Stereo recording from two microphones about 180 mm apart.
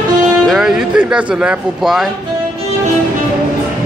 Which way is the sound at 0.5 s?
5° right (ahead or behind).